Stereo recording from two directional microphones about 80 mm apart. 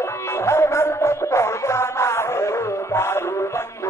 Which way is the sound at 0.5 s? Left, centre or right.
Left.